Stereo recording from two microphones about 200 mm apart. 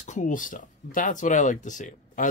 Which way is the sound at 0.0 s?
40° left (ahead or behind).